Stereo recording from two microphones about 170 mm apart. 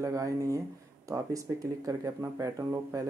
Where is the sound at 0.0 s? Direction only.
20° right (ahead or behind).